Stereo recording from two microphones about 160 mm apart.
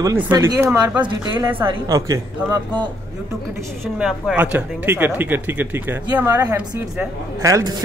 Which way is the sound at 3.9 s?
5° right (ahead or behind).